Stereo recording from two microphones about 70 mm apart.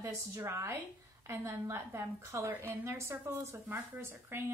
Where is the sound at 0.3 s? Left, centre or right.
Right.